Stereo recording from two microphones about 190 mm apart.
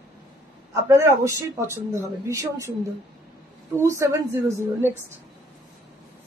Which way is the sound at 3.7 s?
15° right (ahead or behind).